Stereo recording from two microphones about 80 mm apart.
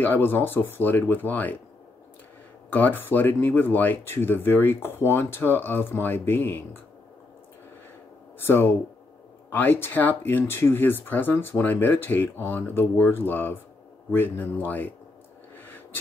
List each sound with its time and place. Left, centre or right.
0.0 s speech: left
2.7 s speech: left
8.4 s speech: left
15.5 s a sound: left